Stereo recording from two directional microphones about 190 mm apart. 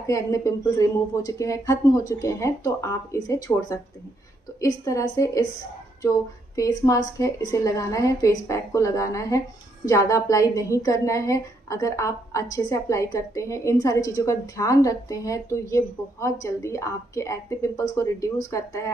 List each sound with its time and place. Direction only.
0.0 s a woman's voice: 15° left (ahead or behind)
6.0 s a sound: 20° left (ahead or behind)
7.2 s a woman's voice: 15° left (ahead or behind)